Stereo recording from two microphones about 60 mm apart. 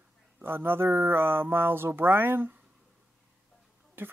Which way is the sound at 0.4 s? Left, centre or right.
Right.